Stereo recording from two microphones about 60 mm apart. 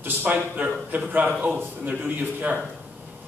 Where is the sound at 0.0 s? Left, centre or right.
Right.